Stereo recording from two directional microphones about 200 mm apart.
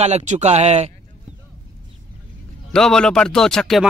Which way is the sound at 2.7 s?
5° left (ahead or behind).